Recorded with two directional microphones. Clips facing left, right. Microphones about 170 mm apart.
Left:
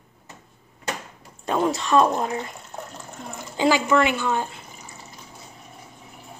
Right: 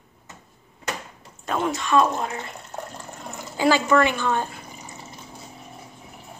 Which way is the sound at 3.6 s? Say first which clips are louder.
Even; 15° left (ahead or behind).